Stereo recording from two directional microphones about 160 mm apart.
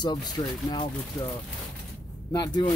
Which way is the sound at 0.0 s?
25° left (ahead or behind).